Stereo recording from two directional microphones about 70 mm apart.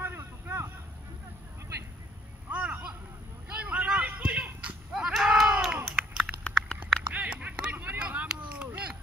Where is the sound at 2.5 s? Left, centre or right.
Centre.